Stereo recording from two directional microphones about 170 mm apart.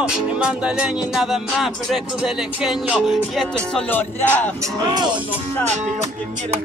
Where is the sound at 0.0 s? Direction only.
5° right (ahead or behind); by 4.5 s 10° left (ahead or behind).